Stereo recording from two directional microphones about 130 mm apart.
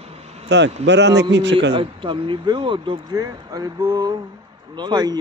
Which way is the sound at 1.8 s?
40° right (ahead or behind).